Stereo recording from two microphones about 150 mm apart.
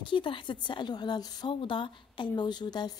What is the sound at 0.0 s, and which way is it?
Speech, 35° left (ahead or behind).